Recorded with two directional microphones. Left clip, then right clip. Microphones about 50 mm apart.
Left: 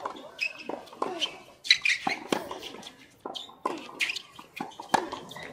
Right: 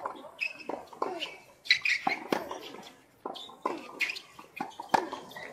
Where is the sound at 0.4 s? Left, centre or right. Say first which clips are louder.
Left 2 dB; left.